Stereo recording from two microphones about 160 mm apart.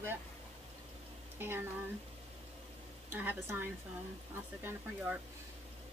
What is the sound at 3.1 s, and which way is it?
A woman's voice, 15° right (ahead or behind).